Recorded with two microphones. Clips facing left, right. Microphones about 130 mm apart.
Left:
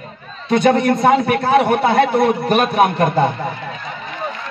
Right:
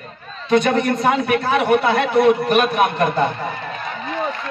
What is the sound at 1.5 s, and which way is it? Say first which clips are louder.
Speech: left 2 dB; 35° left (ahead or behind).